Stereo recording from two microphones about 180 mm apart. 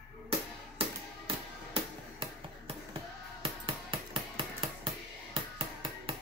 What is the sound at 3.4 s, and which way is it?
Music, 30° right (ahead or behind).